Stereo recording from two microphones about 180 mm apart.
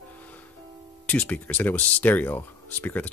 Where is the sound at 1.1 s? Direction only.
10° left (ahead or behind).